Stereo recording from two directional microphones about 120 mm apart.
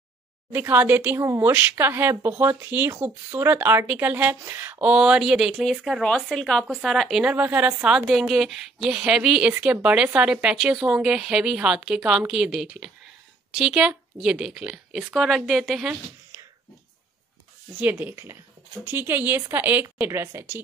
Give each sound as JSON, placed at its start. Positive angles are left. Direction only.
{"t": 0.5, "sound": "a woman's voice", "side_deg": -15}
{"t": 15.9, "sound": "a sound", "side_deg": -20}
{"t": 17.7, "sound": "speech", "side_deg": -15}